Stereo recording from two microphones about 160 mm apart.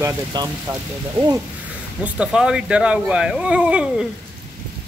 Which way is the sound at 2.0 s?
5° right (ahead or behind).